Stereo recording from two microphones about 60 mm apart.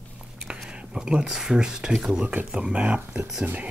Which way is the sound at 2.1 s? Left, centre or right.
Centre.